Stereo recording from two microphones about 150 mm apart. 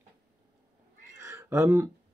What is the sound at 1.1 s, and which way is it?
Cat, 15° right (ahead or behind).